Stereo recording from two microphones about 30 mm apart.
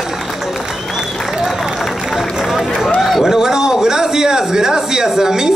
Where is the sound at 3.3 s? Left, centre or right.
Centre.